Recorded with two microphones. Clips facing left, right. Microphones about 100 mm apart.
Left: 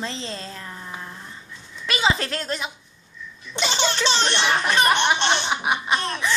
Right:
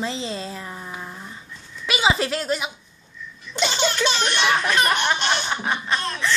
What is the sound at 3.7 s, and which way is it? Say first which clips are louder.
Laughter: left 1 dB; 25° left (ahead or behind).